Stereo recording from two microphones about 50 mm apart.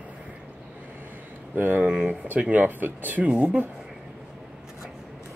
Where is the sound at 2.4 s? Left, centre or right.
Right.